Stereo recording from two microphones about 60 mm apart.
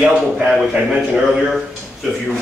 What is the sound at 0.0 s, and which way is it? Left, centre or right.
Speech, centre.